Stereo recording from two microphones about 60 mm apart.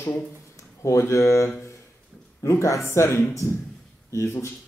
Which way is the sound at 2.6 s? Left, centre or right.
Left.